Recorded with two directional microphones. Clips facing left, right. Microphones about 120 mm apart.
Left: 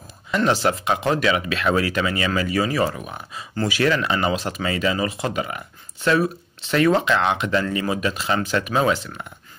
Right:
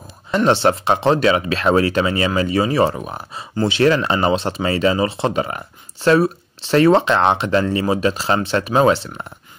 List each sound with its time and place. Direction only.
0.3 s speech: 30° right (ahead or behind)